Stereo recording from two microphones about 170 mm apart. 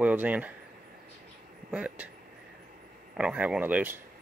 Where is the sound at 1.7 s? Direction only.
5° right (ahead or behind).